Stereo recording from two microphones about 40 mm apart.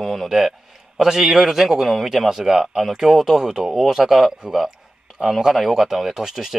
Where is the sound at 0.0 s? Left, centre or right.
Centre.